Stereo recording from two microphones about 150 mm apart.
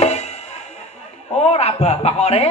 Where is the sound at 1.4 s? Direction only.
45° left (ahead or behind).